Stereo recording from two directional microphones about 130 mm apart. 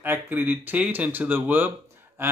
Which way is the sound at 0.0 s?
15° right (ahead or behind).